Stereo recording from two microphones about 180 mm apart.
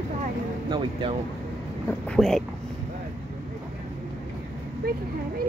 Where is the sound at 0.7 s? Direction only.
30° right (ahead or behind).